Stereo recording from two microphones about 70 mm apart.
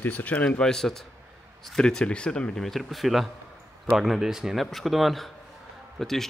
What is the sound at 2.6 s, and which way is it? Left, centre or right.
Speech, centre.